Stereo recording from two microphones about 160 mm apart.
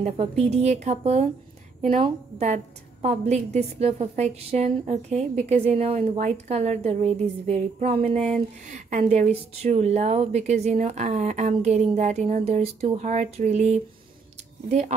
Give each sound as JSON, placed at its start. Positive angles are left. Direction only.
{"t": 0.0, "sound": "a woman's voice", "side_deg": -45}